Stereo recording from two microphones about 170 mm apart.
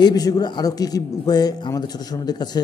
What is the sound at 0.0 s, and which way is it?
A man's voice, 20° left (ahead or behind).